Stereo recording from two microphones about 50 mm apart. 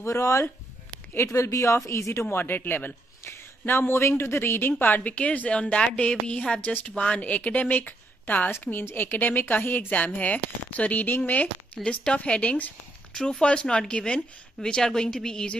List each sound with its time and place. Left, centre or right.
0.0 s speech: left
1.3 s speech: left
1.9 s speech: left
2.3 s speech: left
13.1 s speech: centre